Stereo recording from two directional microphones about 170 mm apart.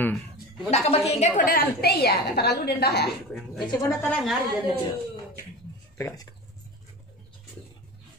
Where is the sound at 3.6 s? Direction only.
25° left (ahead or behind).